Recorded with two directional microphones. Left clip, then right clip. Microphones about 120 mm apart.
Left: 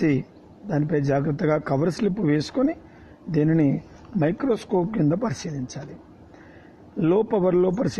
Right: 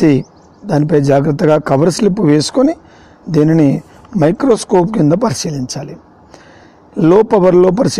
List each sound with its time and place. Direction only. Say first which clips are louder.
0.0 s a man's voice: right 12 dB; 30° right (ahead or behind)
7.0 s a man's voice: right 12 dB; 30° right (ahead or behind)